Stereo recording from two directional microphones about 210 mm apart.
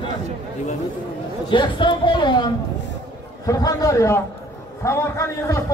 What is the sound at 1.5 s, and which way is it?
A man's voice, 20° left (ahead or behind).